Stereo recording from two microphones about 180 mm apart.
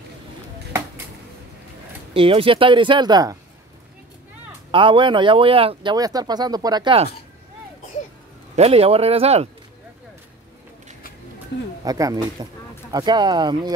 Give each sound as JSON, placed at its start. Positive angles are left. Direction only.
{"t": 2.1, "sound": "speech", "side_deg": -30}
{"t": 4.6, "sound": "speech", "side_deg": -25}
{"t": 8.5, "sound": "speech", "side_deg": -35}
{"t": 11.8, "sound": "speech", "side_deg": -20}